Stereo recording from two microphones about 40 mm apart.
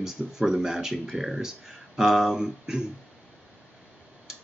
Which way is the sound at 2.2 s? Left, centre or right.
Centre.